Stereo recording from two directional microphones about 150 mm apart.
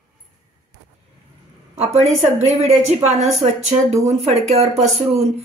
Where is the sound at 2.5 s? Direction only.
45° right (ahead or behind).